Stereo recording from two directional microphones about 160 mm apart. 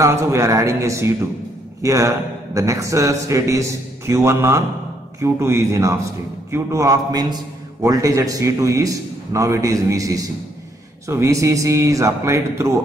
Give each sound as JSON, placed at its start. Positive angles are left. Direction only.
{"t": 0.0, "sound": "a man's voice", "side_deg": -20}